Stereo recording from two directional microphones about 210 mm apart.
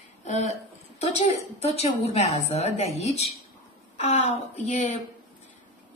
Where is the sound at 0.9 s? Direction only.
30° left (ahead or behind).